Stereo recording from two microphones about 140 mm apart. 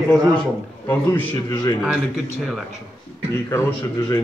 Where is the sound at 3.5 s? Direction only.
20° left (ahead or behind).